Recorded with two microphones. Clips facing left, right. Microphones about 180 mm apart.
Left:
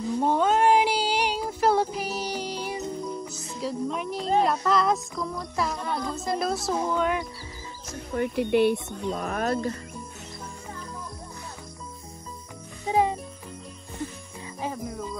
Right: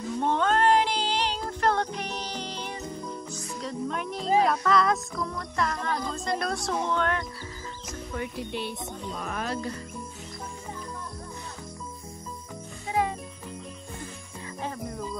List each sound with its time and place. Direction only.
0.1 s child singing: 10° left (ahead or behind)
3.6 s speech: centre (ahead or behind)
8.2 s music: 60° left (ahead or behind); by 9.8 s 45° left (ahead or behind)
12.8 s music: 20° left (ahead or behind)